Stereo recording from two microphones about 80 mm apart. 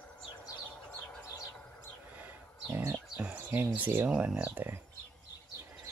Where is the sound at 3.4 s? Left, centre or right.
Right.